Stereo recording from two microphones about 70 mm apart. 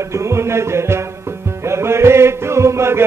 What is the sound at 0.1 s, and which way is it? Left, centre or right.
Music, right.